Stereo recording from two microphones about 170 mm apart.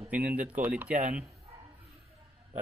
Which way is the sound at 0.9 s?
45° right (ahead or behind).